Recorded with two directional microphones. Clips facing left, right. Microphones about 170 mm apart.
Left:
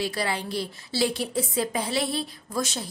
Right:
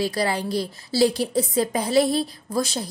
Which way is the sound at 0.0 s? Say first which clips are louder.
Right 5 dB; 40° right (ahead or behind).